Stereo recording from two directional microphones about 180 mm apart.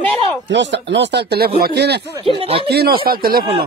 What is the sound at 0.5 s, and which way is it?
Speech, 75° right (ahead or behind).